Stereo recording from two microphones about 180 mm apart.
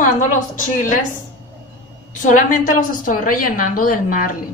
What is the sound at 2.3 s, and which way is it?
A woman's voice, 45° left (ahead or behind).